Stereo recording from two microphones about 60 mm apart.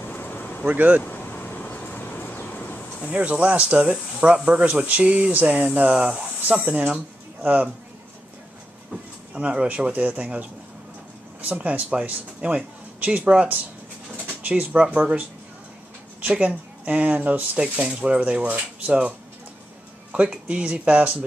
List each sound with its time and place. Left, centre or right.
0.0 s vehicle: left
0.7 s speech: right
1.0 s a sound: left
3.1 s speech: right
9.3 s speech: centre
11.4 s speech: right
16.3 s speech: right